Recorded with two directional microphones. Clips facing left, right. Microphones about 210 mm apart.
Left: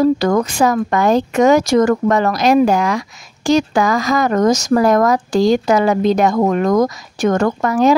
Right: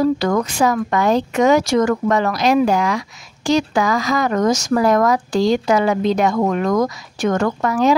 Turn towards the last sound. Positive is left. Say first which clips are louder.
# left 3 dB
turn(degrees=45)  # may be behind; listen again after turning